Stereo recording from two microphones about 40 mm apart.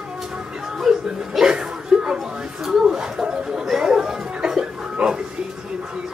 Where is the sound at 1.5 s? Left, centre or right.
Centre.